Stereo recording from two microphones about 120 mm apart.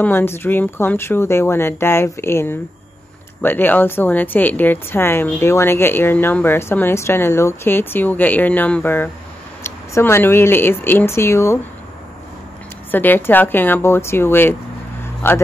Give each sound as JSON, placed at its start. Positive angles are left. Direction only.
{"t": 0.0, "sound": "a woman's voice", "side_deg": 20}
{"t": 12.9, "sound": "a woman's voice", "side_deg": 15}